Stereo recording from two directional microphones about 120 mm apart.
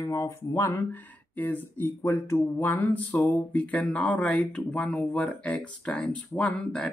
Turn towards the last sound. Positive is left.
turn(degrees=10)  # may be behind; listen again after turning